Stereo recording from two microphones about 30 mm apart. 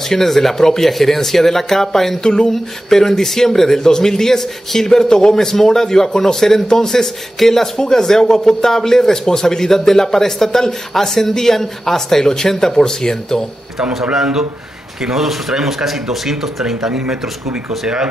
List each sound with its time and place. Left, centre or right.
0.1 s speech: centre
2.2 s speech: left
2.5 s speech: centre
7.7 s speech: left
14.1 s speech: centre